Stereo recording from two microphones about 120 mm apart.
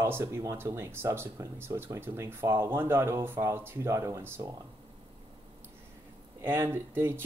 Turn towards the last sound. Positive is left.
turn(degrees=-20)  # may be behind; listen again after turning